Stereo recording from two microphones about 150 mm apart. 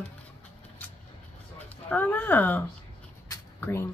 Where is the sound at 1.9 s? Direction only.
10° left (ahead or behind).